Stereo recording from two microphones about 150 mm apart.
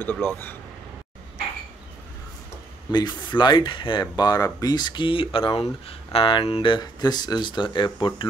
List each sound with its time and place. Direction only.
0.0 s speech: 15° left (ahead or behind)
2.9 s speech: 30° left (ahead or behind)